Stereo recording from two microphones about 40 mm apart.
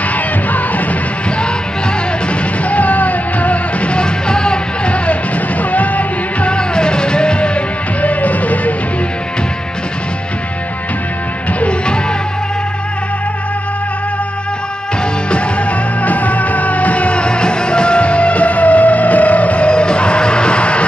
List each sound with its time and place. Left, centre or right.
2.2 s music: left
6.5 s music: left
16.0 s music: left